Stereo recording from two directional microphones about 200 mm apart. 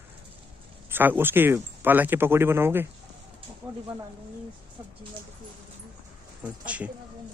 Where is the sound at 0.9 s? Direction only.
10° right (ahead or behind).